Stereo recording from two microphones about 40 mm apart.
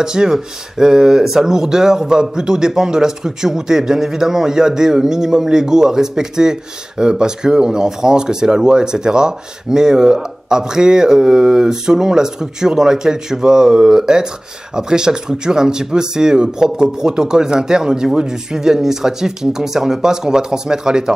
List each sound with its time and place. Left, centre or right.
0.0 s speech: centre